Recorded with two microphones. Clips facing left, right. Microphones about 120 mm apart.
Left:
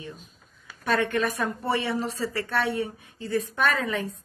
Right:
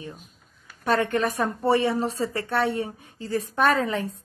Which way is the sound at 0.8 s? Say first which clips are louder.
Right 2 dB; 30° right (ahead or behind).